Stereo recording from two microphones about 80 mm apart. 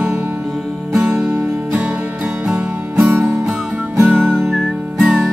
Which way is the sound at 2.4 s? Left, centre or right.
Centre.